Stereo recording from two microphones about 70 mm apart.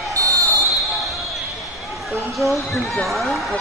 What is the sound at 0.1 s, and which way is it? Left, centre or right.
Basketball bounce, right.